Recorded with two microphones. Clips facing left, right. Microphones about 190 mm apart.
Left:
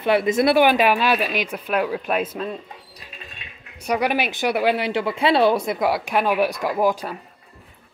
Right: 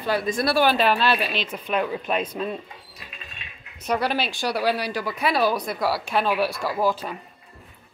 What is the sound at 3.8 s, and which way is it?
Speech, 15° left (ahead or behind).